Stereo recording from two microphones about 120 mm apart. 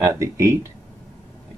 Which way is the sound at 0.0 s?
25° right (ahead or behind).